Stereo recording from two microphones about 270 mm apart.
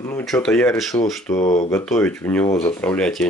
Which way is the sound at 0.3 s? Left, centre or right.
Centre.